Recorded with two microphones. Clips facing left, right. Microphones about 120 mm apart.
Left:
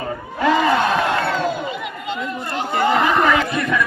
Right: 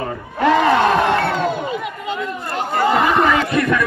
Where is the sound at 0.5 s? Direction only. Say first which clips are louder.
Right 2 dB; 55° right (ahead or behind).